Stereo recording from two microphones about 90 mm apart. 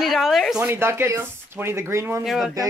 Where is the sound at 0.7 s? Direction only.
25° right (ahead or behind).